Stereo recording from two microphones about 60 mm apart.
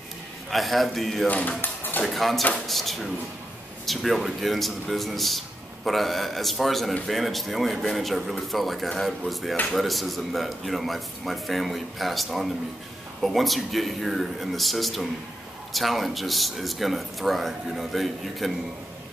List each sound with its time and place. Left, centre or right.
0.5 s a man's voice: centre
1.2 s speech: left
1.6 s a sound: left
2.0 s a man's voice: centre